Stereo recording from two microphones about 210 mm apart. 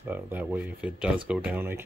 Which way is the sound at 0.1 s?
10° right (ahead or behind).